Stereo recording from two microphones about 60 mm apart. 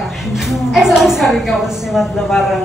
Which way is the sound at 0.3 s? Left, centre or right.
Centre.